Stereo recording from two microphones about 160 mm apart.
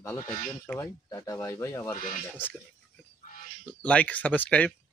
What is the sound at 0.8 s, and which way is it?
Speech, 20° left (ahead or behind).